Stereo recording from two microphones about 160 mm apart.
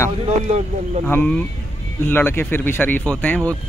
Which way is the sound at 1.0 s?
10° left (ahead or behind).